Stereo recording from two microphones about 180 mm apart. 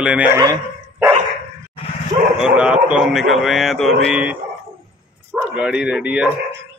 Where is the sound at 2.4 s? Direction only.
5° right (ahead or behind).